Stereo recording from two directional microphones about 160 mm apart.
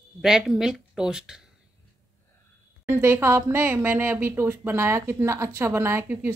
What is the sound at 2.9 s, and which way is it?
Speech, 15° right (ahead or behind).